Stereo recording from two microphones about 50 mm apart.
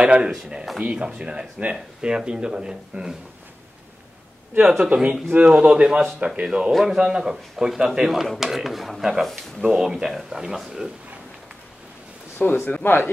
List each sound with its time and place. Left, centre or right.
0.0 s speech: centre
4.8 s speech: centre
6.7 s speech: centre
12.4 s a man's voice: left